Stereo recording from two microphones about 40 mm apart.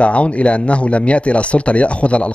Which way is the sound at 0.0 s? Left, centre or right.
Left.